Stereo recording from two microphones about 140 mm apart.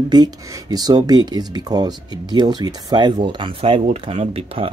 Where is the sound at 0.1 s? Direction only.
30° right (ahead or behind).